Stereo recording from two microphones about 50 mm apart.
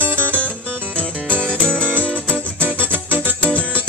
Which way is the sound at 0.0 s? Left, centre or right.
Right.